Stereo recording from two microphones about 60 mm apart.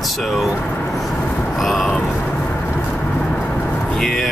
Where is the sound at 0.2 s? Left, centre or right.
Centre.